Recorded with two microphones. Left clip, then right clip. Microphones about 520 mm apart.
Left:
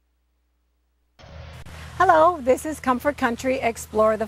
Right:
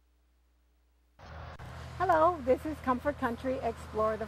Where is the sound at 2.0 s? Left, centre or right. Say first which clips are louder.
Left 10 dB; left.